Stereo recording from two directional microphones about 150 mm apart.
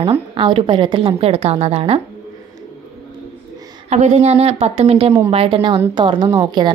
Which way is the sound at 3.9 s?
50° right (ahead or behind).